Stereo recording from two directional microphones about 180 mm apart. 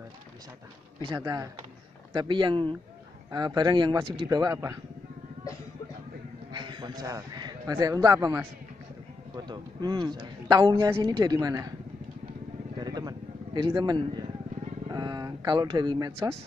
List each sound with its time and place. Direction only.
1.0 s a man's voice: 20° right (ahead or behind)
6.5 s a man's voice: 25° right (ahead or behind)
12.7 s a sound: 20° right (ahead or behind)
14.9 s speech: 20° right (ahead or behind)